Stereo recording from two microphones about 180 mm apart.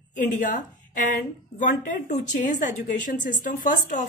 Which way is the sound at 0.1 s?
45° left (ahead or behind).